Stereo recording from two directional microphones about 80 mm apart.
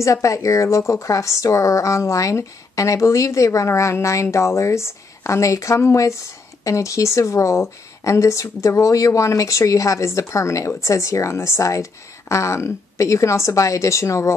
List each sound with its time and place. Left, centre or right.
0.0 s a woman's voice: left